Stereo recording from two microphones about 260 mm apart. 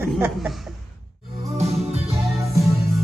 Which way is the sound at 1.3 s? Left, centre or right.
Right.